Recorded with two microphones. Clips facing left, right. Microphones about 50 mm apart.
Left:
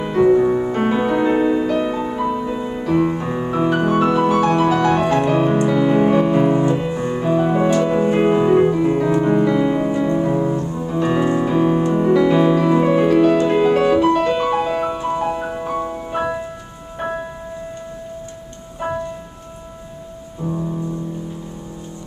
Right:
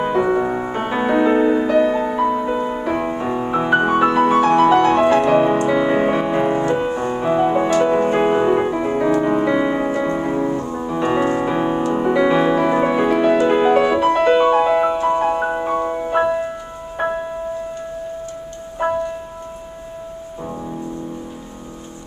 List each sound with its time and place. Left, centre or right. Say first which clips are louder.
0.3 s music: left 4 dB; right
4.6 s music: right 3 dB; right
9.8 s music: left 2 dB; right
10.9 s music: even; right
11.2 s music: left 2 dB; right
12.1 s music: left 1 dB; centre